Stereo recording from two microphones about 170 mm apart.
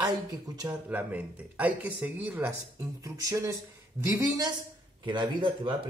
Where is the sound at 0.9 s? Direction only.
10° right (ahead or behind).